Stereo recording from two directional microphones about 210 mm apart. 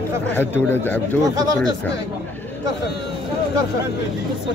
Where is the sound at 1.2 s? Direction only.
15° right (ahead or behind).